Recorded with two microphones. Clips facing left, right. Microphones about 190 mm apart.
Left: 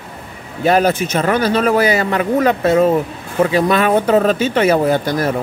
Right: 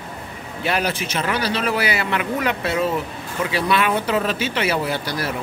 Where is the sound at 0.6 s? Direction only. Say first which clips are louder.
Left 9 dB; 45° left (ahead or behind).